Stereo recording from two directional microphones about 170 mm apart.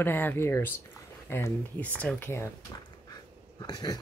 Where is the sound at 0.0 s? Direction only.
10° left (ahead or behind).